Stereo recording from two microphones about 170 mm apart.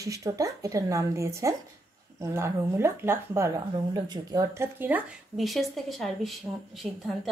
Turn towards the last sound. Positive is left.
turn(degrees=0)  # may be behind; listen again after turning